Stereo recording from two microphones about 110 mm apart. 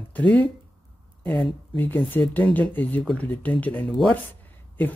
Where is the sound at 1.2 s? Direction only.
15° left (ahead or behind).